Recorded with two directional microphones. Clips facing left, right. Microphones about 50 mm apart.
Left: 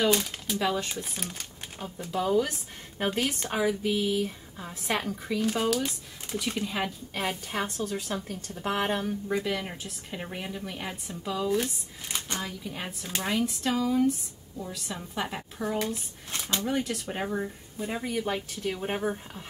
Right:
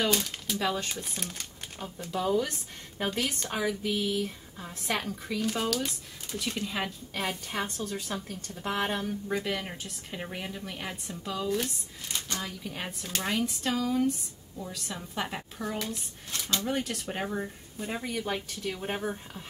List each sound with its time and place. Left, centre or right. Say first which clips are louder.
0.1 s speech: left 3 dB; centre
12.2 s a sound: left 2 dB; left
12.4 s speech: left 1 dB; centre
15.8 s speech: left 4 dB; left
16.6 s speech: left 2 dB; centre